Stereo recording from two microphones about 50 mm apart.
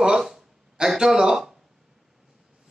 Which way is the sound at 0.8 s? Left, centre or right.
Centre.